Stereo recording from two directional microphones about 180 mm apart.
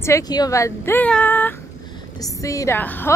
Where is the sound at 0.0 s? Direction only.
20° left (ahead or behind).